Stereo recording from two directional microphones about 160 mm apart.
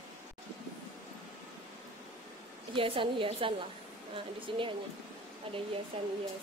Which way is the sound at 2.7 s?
35° right (ahead or behind).